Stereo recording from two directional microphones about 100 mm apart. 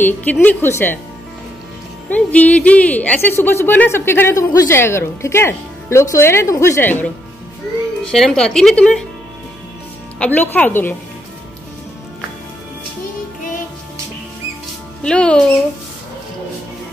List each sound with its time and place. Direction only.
0.0 s a woman's voice: 15° left (ahead or behind)
2.0 s a woman's voice: 15° left (ahead or behind); by 6.8 s 30° left (ahead or behind)
6.8 s a woman's voice: 20° left (ahead or behind)
8.0 s speech: 5° left (ahead or behind)
10.1 s speech: 15° left (ahead or behind)
15.0 s speech: 10° left (ahead or behind)